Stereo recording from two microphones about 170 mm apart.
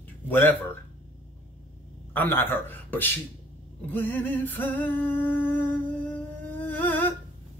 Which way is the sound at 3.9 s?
10° left (ahead or behind).